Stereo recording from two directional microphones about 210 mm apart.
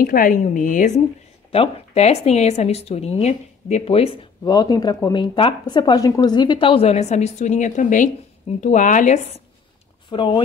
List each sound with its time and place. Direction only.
0.0 s a woman's voice: 40° left (ahead or behind); by 10.4 s 20° left (ahead or behind)